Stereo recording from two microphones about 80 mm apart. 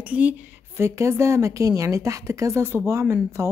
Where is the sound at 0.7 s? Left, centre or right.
Right.